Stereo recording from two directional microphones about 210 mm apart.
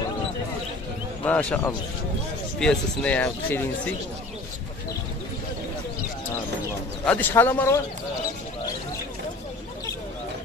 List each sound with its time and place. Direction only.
1.2 s speech: 5° left (ahead or behind)
7.1 s speech: 10° left (ahead or behind)